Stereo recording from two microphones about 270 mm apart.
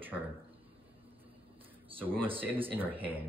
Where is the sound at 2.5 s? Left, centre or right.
Centre.